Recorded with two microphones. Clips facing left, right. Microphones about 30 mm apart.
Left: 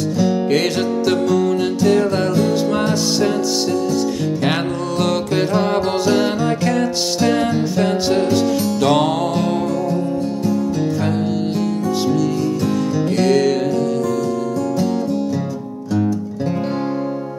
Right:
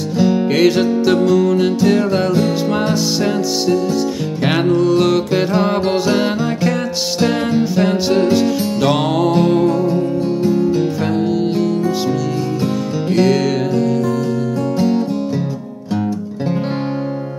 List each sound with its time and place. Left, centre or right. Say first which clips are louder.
0.2 s music: right 5 dB; centre
4.4 s music: right 5 dB; centre; by 10.9 s right
11.0 s music: right 3 dB; centre
13.1 s music: right 2 dB; centre